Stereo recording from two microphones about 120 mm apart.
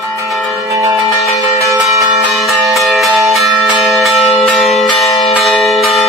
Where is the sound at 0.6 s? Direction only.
25° right (ahead or behind).